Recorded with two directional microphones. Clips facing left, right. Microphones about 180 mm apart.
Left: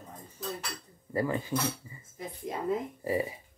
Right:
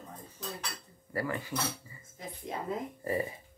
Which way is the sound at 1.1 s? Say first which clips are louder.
Left 4 dB; 20° left (ahead or behind).